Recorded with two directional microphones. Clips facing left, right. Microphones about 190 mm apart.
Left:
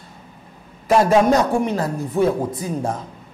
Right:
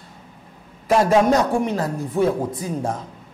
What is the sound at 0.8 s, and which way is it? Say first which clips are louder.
A man's voice: left 1 dB; 15° left (ahead or behind).